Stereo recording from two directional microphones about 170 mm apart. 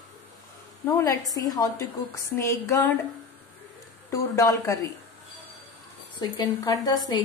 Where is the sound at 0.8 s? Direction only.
15° left (ahead or behind).